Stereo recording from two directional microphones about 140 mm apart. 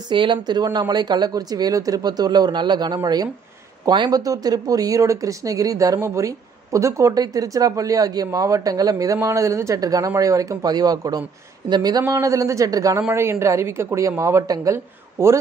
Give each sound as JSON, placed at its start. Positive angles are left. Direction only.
{"t": 0.1, "sound": "speech", "side_deg": -35}